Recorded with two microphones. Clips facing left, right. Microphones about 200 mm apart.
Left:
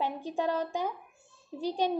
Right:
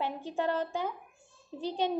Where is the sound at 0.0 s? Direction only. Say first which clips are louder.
Left 1 dB; 15° left (ahead or behind).